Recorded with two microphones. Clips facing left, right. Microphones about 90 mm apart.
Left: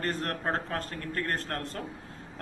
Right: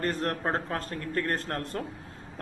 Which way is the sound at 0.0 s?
25° right (ahead or behind).